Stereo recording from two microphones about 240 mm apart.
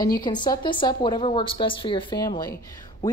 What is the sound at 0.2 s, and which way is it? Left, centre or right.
Speech, centre.